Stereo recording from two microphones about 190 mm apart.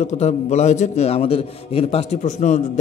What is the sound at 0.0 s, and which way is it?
Mantra, 35° left (ahead or behind).